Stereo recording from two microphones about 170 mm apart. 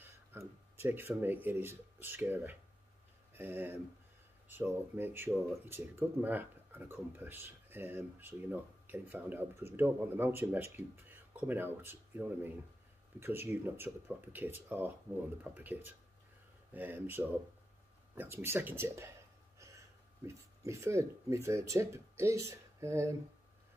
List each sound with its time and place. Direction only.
0.0 s speech: 15° right (ahead or behind)
20.2 s speech: 15° right (ahead or behind)